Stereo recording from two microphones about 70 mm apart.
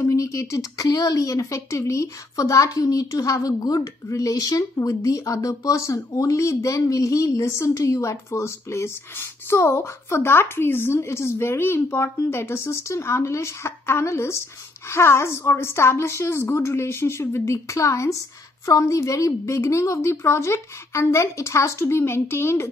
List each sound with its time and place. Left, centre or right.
0.0 s a woman's voice: left